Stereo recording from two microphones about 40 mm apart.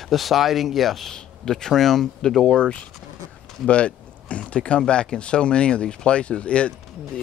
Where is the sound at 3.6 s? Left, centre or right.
Left.